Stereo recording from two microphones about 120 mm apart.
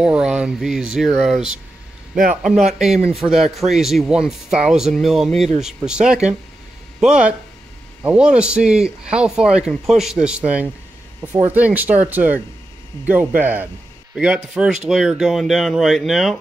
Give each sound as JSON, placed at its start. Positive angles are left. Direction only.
{"t": 0.0, "sound": "speech", "side_deg": -5}
{"t": 3.1, "sound": "speech", "side_deg": -5}